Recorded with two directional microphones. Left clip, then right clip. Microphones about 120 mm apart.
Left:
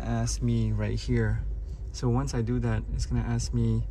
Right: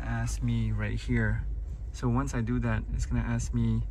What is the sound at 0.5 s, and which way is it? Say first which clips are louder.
Speech: left 1 dB; 30° left (ahead or behind).